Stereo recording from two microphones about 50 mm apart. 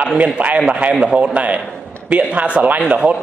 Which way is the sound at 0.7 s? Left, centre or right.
Right.